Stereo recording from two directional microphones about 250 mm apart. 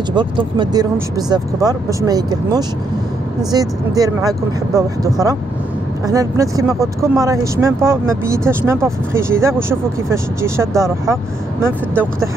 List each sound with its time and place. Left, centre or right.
0.1 s speech: centre